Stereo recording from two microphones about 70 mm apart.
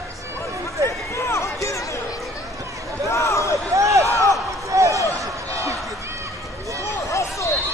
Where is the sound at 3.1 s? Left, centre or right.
Left.